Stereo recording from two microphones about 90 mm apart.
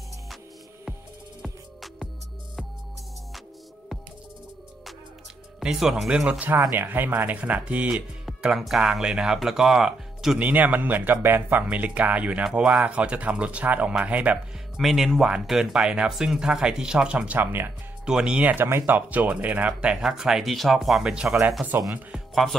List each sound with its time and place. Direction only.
1.4 s music: centre (ahead or behind)
5.6 s speech: 5° right (ahead or behind)
10.4 s speech: 20° right (ahead or behind)
14.8 s speech: centre (ahead or behind); by 17.7 s 25° right (ahead or behind)
18.0 s speech: 10° right (ahead or behind)
22.1 s music: centre (ahead or behind)